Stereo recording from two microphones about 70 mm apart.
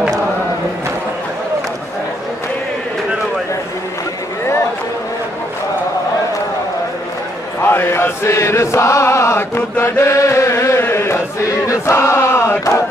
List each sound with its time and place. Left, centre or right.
7.6 s chant: left
11.4 s battle cry: left